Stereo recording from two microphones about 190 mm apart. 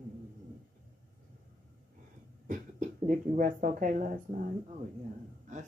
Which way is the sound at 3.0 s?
45° right (ahead or behind).